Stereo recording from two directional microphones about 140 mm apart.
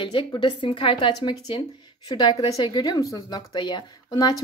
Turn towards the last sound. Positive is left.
turn(degrees=30)  # may be behind; listen again after turning